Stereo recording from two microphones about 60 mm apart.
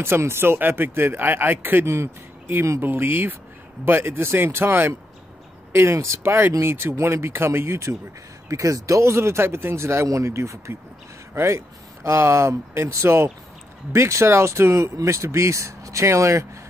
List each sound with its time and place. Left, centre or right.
0.0 s speech: right
1.9 s speech: right
2.8 s speech: right
8.5 s speech: right